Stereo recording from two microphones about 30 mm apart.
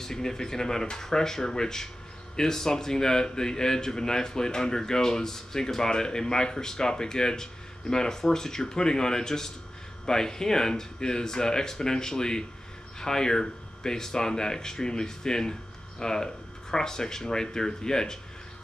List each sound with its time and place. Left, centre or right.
0.0 s a man's voice: centre